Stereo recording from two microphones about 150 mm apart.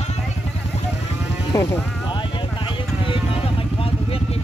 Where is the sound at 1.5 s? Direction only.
25° left (ahead or behind); by 4.4 s 40° left (ahead or behind).